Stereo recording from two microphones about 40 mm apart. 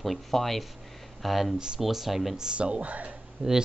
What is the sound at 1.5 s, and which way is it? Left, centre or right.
Speech, centre.